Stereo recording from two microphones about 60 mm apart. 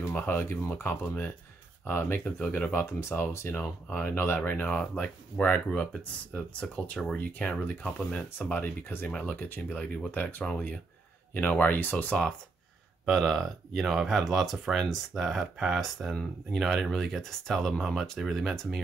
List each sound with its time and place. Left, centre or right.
0.0 s speech: left
0.5 s speech: left
2.2 s speech: left
2.5 s speech: left
2.8 s speech: left
4.6 s speech: centre
8.5 s speech: left
9.1 s speech: left
10.1 s speech: left
13.0 s speech: centre